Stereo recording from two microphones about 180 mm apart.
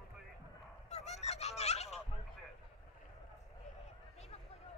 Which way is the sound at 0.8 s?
40° left (ahead or behind).